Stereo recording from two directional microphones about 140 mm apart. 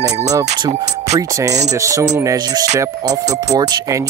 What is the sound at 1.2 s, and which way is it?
Speech, 25° right (ahead or behind).